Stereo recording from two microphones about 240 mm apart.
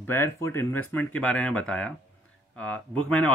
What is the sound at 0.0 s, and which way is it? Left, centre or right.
Speech, centre.